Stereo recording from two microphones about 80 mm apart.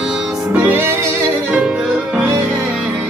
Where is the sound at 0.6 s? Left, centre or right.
Right.